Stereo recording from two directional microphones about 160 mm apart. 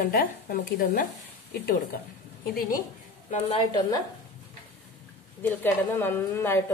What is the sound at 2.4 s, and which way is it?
Speech, 65° left (ahead or behind).